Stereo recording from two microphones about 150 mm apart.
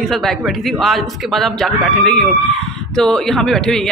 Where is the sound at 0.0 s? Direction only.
Centre (ahead or behind).